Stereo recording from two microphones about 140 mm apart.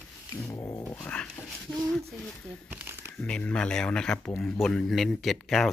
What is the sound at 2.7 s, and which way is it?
Crumpling, 15° right (ahead or behind).